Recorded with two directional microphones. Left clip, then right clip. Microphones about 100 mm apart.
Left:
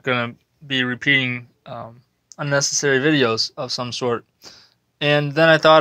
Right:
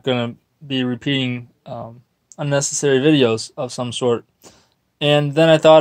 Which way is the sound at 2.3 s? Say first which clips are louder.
Even; 40° right (ahead or behind).